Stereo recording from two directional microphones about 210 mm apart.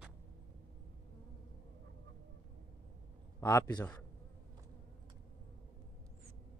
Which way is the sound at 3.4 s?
15° left (ahead or behind).